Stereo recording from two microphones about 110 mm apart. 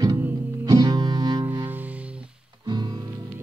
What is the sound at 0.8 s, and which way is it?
Music, 40° right (ahead or behind).